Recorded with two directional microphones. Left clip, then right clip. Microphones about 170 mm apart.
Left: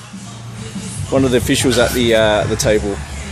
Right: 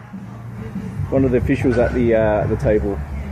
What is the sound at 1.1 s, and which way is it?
Speech, 30° left (ahead or behind).